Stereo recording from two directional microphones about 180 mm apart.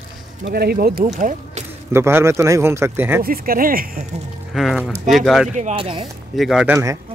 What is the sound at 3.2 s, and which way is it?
Speech, 55° right (ahead or behind).